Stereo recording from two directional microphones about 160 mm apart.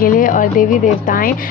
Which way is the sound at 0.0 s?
60° left (ahead or behind).